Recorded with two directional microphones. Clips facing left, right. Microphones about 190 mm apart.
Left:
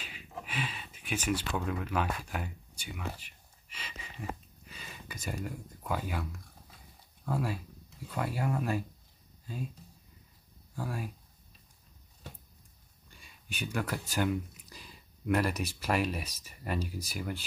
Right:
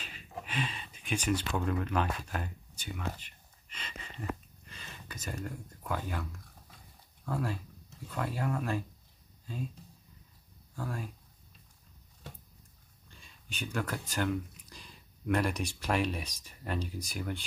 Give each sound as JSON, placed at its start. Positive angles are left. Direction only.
{"t": 0.0, "sound": "speech", "side_deg": 10}
{"t": 7.2, "sound": "speech", "side_deg": 10}
{"t": 10.8, "sound": "speech", "side_deg": 10}
{"t": 13.1, "sound": "speech", "side_deg": 10}